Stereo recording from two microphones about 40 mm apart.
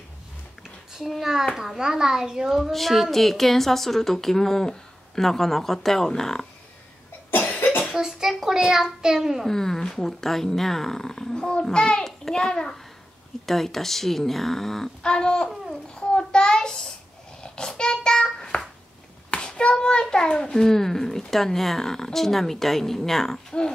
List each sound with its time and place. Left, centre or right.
1.5 s a child's voice: centre
2.5 s a child's voice: centre
7.4 s cough: left
7.9 s a child's voice: centre
9.5 s a child's voice: centre
11.3 s a child's voice: left
12.0 s a sound: centre
13.5 s a child's voice: centre
15.0 s speech: left
15.7 s child singing: left
19.3 s a child's voice: left; by 23.4 s centre